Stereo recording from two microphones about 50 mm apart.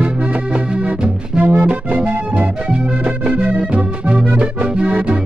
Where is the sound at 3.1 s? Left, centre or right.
Right.